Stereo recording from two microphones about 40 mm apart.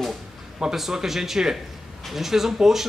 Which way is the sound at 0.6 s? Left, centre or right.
Centre.